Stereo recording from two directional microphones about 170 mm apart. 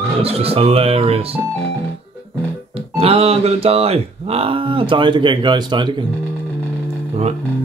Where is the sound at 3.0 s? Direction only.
35° right (ahead or behind).